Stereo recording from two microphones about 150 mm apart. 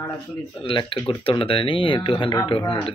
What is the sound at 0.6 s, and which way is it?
A man's voice, 35° left (ahead or behind).